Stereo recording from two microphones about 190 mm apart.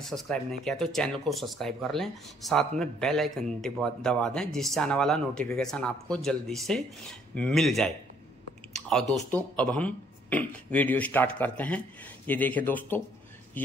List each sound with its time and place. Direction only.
0.0 s speech: centre (ahead or behind)
8.7 s clicking: centre (ahead or behind)
9.1 s speech: 5° left (ahead or behind)